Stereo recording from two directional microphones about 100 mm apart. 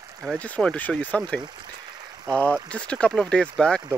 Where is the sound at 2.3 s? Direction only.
10° left (ahead or behind).